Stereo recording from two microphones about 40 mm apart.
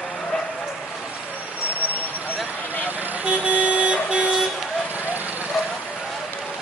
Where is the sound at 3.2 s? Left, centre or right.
Right.